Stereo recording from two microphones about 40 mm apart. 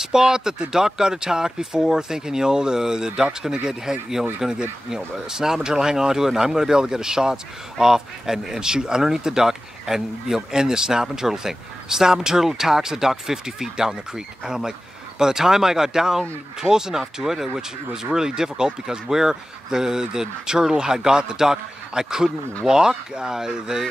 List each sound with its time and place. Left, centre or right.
0.0 s speech: centre